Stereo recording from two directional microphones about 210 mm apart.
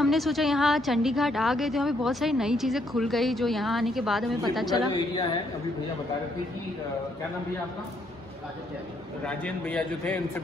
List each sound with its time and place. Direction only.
0.0 s a woman's voice: centre (ahead or behind)
4.7 s a woman's voice: 20° left (ahead or behind)
9.2 s a woman's voice: 5° left (ahead or behind)